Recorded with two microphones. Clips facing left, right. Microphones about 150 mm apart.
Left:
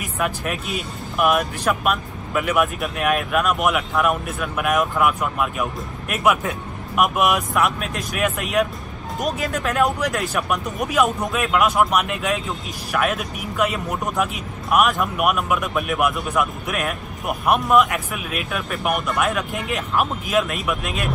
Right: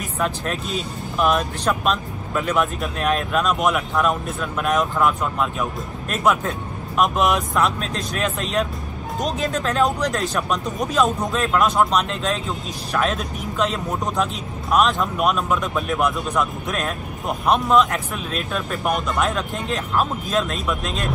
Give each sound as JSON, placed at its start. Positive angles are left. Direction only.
{"t": 0.0, "sound": "speech", "side_deg": 10}